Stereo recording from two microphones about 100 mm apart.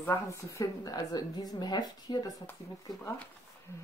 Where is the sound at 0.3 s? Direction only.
30° left (ahead or behind).